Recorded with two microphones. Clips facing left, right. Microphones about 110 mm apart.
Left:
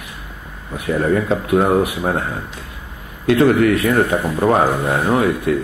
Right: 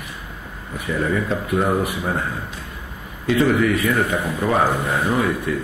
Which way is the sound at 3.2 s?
60° left (ahead or behind).